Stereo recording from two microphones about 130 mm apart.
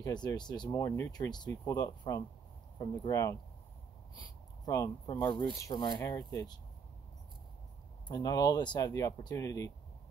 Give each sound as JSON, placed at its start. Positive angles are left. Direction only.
{"t": 0.0, "sound": "speech", "side_deg": 30}
{"t": 4.6, "sound": "speech", "side_deg": 25}
{"t": 8.1, "sound": "speech", "side_deg": 30}